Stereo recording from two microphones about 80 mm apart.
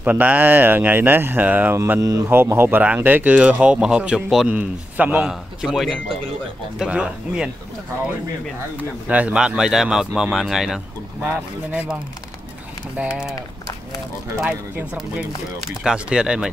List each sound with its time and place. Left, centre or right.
0.0 s speech: centre
2.0 s speech: right
2.2 s speech: right; by 4.5 s centre
4.5 s speech: centre
5.3 s speech: centre
9.0 s speech: centre
11.2 s speech: centre
15.8 s speech: centre